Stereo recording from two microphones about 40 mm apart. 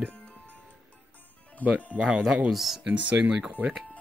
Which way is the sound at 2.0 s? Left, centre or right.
Centre.